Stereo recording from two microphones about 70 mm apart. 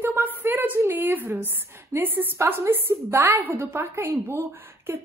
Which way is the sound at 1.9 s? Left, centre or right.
Right.